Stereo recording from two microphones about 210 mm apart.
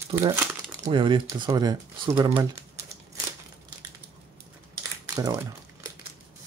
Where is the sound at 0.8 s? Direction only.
25° right (ahead or behind).